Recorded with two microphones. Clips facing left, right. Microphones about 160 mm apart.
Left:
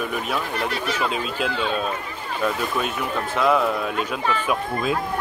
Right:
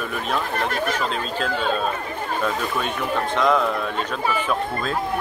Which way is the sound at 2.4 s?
5° left (ahead or behind).